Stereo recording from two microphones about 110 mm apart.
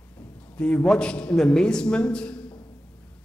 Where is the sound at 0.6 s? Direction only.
10° left (ahead or behind).